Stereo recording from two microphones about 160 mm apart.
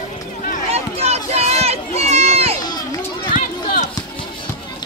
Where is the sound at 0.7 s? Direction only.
40° right (ahead or behind).